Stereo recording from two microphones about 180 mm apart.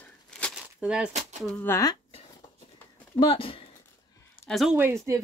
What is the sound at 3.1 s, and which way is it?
Speech, 30° left (ahead or behind).